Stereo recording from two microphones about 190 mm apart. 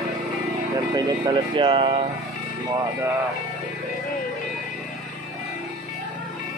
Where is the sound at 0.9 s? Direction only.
20° right (ahead or behind).